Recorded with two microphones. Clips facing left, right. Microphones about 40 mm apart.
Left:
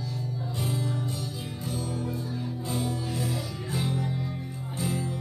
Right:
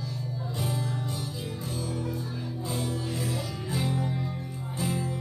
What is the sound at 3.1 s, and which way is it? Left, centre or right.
Music, centre.